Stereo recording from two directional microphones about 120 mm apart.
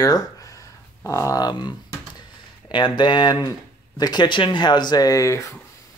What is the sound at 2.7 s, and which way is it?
Speech, 40° left (ahead or behind).